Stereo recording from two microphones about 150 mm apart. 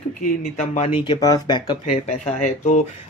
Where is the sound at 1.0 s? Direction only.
25° left (ahead or behind).